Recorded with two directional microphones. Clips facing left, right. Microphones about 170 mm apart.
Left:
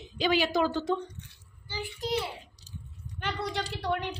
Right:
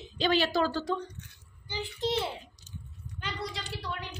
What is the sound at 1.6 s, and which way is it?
Speech, 20° right (ahead or behind).